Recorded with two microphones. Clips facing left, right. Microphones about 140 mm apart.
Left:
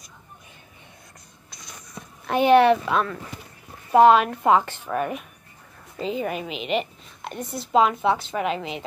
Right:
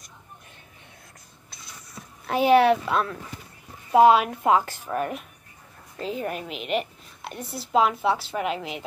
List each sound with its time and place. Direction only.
2.2 s a woman's voice: 5° right (ahead or behind)